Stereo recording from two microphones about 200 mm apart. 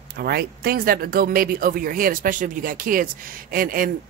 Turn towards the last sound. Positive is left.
turn(degrees=-45)  # may be behind; listen again after turning